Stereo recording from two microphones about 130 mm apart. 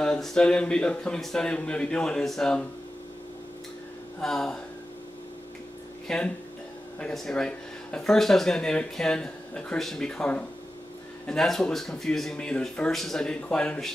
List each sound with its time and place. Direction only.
0.0 s speech: 5° left (ahead or behind)
4.2 s speech: 5° left (ahead or behind)
6.0 s speech: 5° left (ahead or behind)